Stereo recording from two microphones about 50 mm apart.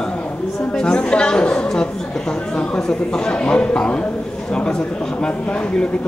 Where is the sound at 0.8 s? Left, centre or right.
Centre.